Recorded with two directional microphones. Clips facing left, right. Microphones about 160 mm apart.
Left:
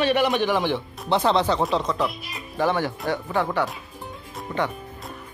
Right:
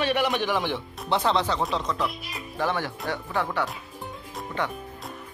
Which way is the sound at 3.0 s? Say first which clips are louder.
Left 3 dB; 15° left (ahead or behind).